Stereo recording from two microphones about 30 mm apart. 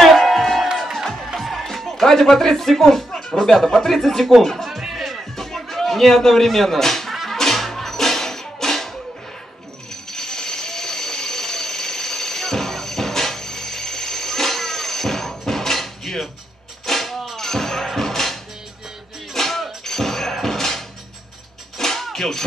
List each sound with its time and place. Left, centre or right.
0.0 s music: centre
3.3 s speech: centre
4.6 s music: centre
5.3 s a sound: centre
7.2 s music: centre
10.1 s ratchet: centre
16.8 s vehicle: centre
17.4 s music: centre
19.8 s a sound: centre
21.7 s music: centre